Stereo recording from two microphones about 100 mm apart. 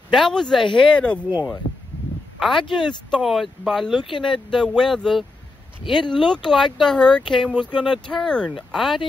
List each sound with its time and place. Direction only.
0.1 s speech: 5° left (ahead or behind)
1.3 s speech: 35° left (ahead or behind)
2.4 s speech: 5° left (ahead or behind)
4.0 s speech: 55° left (ahead or behind)
4.5 s speech: 5° left (ahead or behind)